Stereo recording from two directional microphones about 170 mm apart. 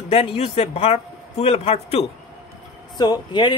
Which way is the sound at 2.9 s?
25° left (ahead or behind).